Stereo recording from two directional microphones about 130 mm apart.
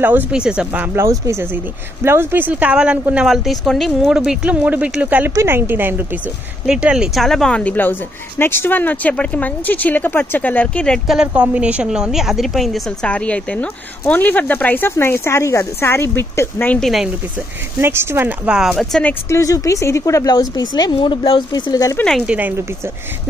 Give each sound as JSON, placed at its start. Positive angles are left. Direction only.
{"t": 0.0, "sound": "speech", "side_deg": -15}
{"t": 1.2, "sound": "a woman's voice", "side_deg": -20}
{"t": 11.1, "sound": "a woman's voice", "side_deg": -5}
{"t": 16.8, "sound": "speech", "side_deg": 0}
{"t": 17.7, "sound": "speech", "side_deg": -20}
{"t": 19.2, "sound": "a woman's voice", "side_deg": 25}
{"t": 21.9, "sound": "speech", "side_deg": 5}
{"t": 22.2, "sound": "speech", "side_deg": -10}